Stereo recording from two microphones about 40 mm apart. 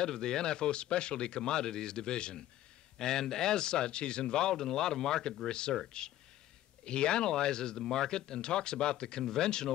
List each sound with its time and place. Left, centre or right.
0.0 s a man's voice: centre
6.8 s a man's voice: left